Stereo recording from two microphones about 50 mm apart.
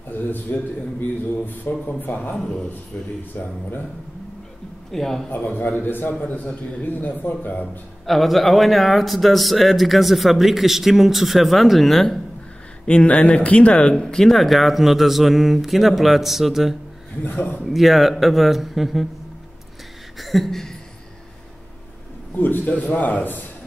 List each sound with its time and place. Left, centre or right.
0.1 s a man's voice: left
2.3 s speech: centre
3.3 s a man's voice: left
4.9 s speech: centre
5.3 s a man's voice: left
8.0 s speech: centre
12.8 s speech: left
14.0 s speech: centre
17.2 s a man's voice: left
17.6 s speech: centre
20.2 s a sound: centre
22.3 s a man's voice: left